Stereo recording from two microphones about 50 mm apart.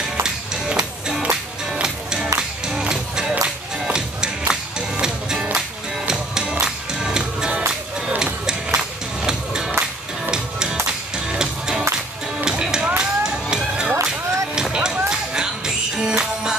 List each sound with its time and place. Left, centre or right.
0.2 s music: centre
9.7 s music: right
10.3 s music: centre